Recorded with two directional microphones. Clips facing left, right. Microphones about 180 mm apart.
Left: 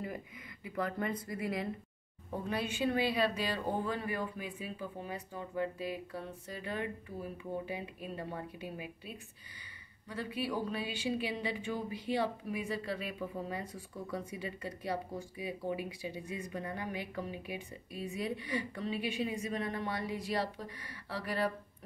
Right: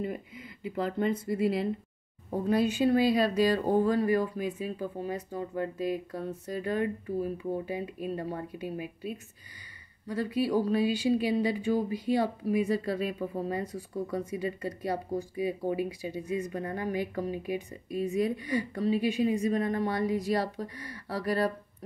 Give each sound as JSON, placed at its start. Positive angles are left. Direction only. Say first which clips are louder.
{"t": 0.0, "sound": "a sound", "louder": "right 7 dB", "side_deg": -25}
{"t": 0.7, "sound": "speech", "louder": "right 6 dB", "side_deg": -25}
{"t": 2.3, "sound": "speech", "louder": "right 10 dB", "side_deg": -40}